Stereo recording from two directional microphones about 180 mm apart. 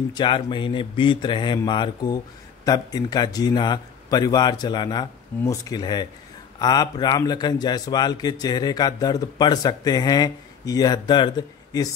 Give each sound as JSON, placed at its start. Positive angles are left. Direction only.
{"t": 0.1, "sound": "speech", "side_deg": 25}